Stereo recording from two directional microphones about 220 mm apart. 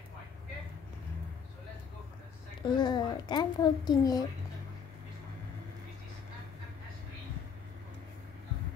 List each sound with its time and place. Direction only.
2.6 s a woman's voice: 20° left (ahead or behind)